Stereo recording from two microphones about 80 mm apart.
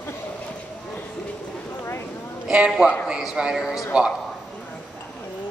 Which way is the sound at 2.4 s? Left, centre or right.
Centre.